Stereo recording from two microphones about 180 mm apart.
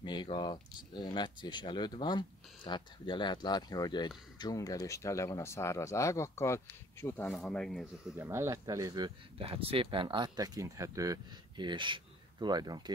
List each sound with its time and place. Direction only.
0.0 s speech: 25° left (ahead or behind)
7.2 s speech: centre (ahead or behind)
8.2 s speech: 15° right (ahead or behind)